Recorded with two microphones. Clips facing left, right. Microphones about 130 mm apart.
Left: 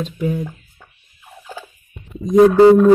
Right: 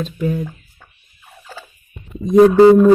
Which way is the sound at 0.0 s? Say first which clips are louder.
Right 1 dB; 15° left (ahead or behind).